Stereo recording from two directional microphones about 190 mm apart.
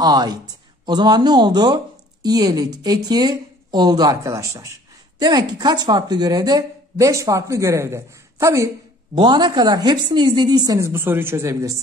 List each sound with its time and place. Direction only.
0.0 s speech: 20° right (ahead or behind)